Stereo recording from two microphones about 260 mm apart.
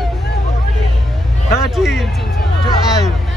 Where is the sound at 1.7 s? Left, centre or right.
Centre.